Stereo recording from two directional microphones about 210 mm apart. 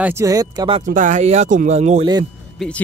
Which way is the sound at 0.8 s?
35° right (ahead or behind).